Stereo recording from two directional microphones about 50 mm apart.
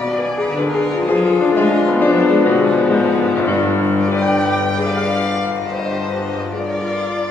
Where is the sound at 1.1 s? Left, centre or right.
Left.